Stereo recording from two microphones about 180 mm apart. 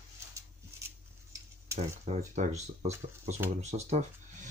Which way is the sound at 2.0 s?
40° right (ahead or behind).